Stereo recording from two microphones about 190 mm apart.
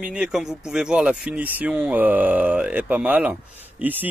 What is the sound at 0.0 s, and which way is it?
Speech, 5° right (ahead or behind).